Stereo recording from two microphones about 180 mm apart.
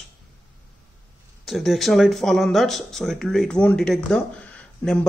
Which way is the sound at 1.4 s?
Centre (ahead or behind).